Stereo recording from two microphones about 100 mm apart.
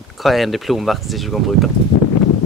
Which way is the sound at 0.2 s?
Centre (ahead or behind).